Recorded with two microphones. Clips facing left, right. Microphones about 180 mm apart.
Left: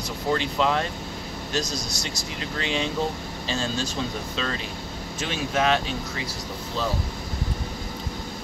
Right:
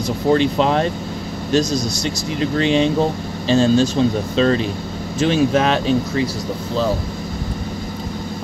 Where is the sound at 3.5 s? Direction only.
25° right (ahead or behind).